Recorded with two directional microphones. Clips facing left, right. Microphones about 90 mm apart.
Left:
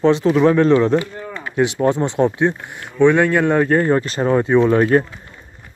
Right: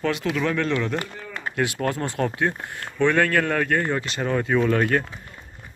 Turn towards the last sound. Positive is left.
turn(degrees=30)  # may be behind; listen again after turning